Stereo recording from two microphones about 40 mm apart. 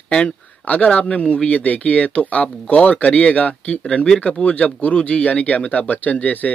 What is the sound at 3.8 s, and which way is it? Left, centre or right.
Speech, left.